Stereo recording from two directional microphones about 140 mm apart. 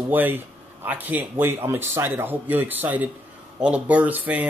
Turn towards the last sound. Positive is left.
turn(degrees=-10)  # may be behind; listen again after turning